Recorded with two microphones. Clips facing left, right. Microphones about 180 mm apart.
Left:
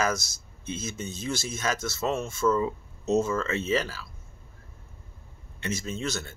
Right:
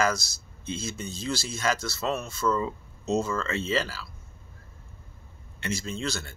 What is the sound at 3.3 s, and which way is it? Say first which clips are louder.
Speech: left 1 dB; 5° left (ahead or behind).